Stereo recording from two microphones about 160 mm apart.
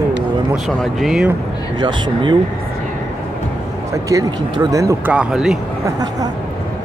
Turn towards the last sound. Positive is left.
turn(degrees=-25)  # may be behind; listen again after turning